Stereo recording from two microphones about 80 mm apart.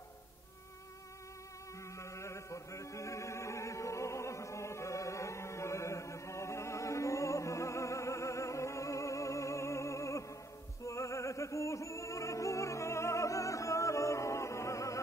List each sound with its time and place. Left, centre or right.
2.0 s chant: left
10.9 s music: left